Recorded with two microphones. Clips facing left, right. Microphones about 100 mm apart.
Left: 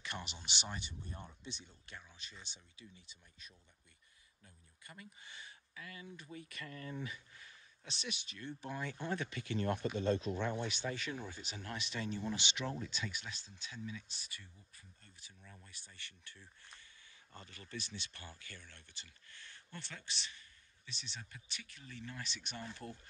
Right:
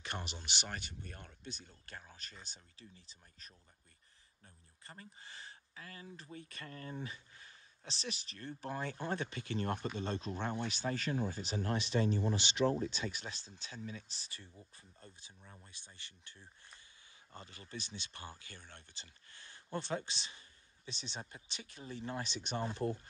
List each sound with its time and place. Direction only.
0.0 s speech: 45° right (ahead or behind); by 1.5 s 65° right (ahead or behind)
1.9 s speech: 45° right (ahead or behind)
4.8 s speech: 35° right (ahead or behind)
18.6 s speech: 45° right (ahead or behind)
20.2 s a sound: 20° right (ahead or behind)
21.2 s speech: 25° right (ahead or behind)